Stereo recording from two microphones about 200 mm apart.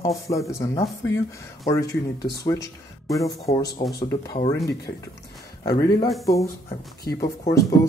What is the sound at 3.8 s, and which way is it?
Speech, 25° left (ahead or behind).